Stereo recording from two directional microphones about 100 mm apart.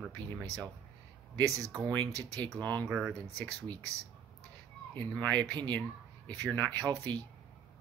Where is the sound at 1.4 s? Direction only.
35° right (ahead or behind).